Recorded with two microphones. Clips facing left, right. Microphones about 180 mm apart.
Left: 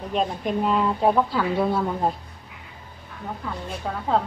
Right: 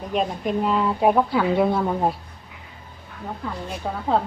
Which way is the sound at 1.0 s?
15° right (ahead or behind).